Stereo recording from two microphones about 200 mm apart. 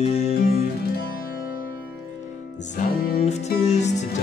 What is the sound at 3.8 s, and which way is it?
Music, 35° left (ahead or behind).